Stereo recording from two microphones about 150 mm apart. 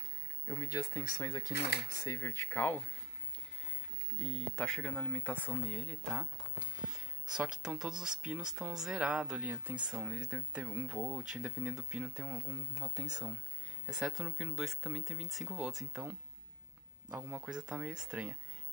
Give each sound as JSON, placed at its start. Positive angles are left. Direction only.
{"t": 0.5, "sound": "speech", "side_deg": 25}
{"t": 4.2, "sound": "speech", "side_deg": 5}
{"t": 7.2, "sound": "speech", "side_deg": -5}
{"t": 12.4, "sound": "speech", "side_deg": -25}
{"t": 13.8, "sound": "speech", "side_deg": -5}